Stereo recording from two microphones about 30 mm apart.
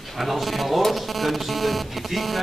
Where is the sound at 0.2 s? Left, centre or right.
Centre.